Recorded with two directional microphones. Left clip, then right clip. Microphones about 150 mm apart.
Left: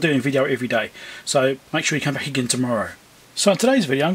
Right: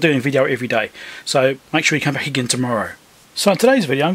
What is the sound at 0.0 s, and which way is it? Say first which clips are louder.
Speech: right 4 dB; 20° right (ahead or behind).